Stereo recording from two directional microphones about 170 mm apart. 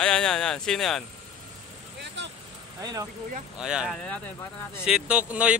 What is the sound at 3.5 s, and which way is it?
A man's voice, 5° right (ahead or behind).